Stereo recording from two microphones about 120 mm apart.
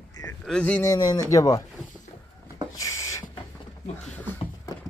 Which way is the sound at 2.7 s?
25° left (ahead or behind).